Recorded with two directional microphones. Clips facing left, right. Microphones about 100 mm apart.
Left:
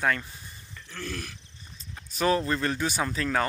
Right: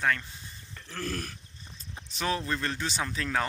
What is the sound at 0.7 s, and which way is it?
Throat clearing, 45° right (ahead or behind).